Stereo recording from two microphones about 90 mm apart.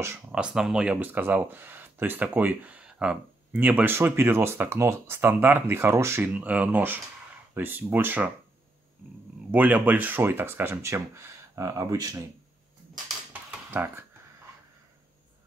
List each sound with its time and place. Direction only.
0.3 s speech: 10° right (ahead or behind); by 6.3 s 30° right (ahead or behind)
6.3 s speech: 15° right (ahead or behind)
9.5 s speech: 15° right (ahead or behind); by 12.2 s 40° right (ahead or behind)
13.7 s speech: 30° right (ahead or behind)